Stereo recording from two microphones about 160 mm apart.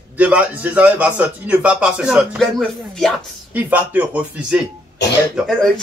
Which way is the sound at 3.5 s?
10° right (ahead or behind).